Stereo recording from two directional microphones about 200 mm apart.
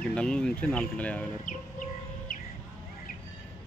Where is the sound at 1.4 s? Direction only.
40° left (ahead or behind).